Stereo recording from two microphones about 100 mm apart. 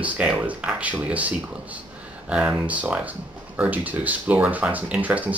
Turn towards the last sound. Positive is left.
turn(degrees=-15)  # may be behind; listen again after turning